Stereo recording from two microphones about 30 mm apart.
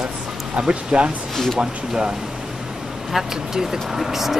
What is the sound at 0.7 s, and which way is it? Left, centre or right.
Speech, right.